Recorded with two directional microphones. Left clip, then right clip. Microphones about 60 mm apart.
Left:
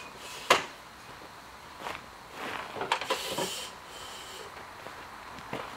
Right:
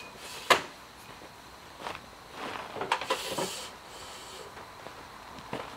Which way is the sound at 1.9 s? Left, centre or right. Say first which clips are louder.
Left 1 dB; centre.